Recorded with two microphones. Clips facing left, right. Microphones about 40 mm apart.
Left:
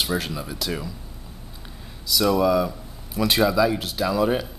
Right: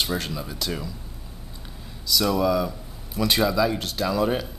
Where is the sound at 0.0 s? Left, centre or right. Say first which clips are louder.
Left 1 dB; centre.